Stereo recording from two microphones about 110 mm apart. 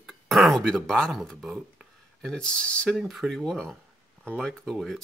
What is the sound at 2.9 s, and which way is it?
Speech, centre (ahead or behind).